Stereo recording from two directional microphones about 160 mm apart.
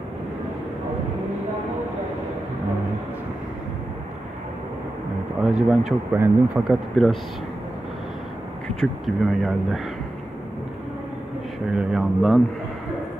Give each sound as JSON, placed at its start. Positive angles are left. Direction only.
{"t": 5.4, "sound": "speech", "side_deg": -5}
{"t": 8.7, "sound": "speech", "side_deg": 0}
{"t": 11.7, "sound": "speech", "side_deg": -5}